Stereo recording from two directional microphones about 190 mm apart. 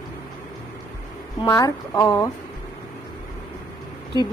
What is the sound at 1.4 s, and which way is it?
Speech, 20° left (ahead or behind).